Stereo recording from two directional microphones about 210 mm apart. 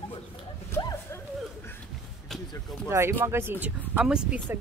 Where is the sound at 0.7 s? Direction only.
15° left (ahead or behind).